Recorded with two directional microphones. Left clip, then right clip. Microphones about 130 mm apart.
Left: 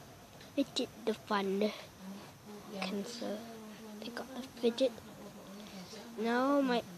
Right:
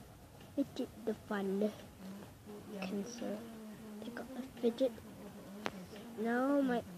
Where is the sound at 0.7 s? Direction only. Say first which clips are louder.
Left 5 dB; 55° left (ahead or behind).